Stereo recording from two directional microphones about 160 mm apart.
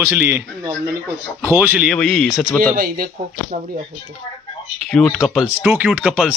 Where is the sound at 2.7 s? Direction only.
65° right (ahead or behind).